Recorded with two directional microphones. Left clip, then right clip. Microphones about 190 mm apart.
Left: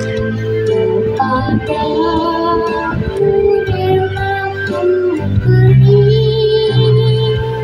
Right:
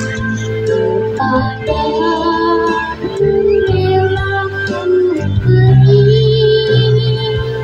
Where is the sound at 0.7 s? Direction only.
30° left (ahead or behind).